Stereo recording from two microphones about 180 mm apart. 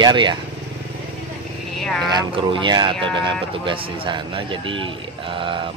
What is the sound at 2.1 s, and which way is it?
Speech, 25° right (ahead or behind).